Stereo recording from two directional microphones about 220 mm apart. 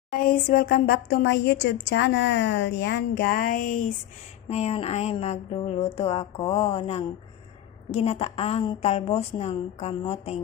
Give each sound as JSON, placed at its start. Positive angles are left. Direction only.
{"t": 0.1, "sound": "speech", "side_deg": 40}